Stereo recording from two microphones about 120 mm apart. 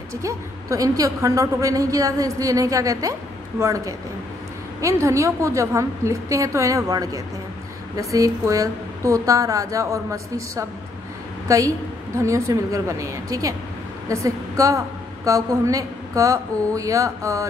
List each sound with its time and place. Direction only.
0.1 s a woman's voice: 25° right (ahead or behind)